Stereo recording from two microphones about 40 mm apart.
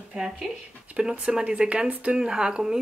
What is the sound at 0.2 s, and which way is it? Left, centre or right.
Speech, centre.